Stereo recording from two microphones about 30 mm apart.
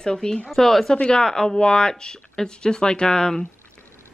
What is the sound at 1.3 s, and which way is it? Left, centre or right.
Speech, left.